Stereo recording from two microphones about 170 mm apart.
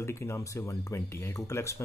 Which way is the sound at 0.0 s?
15° left (ahead or behind).